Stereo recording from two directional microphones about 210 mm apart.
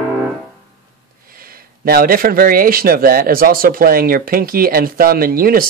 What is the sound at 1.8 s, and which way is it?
A man's voice, 45° right (ahead or behind).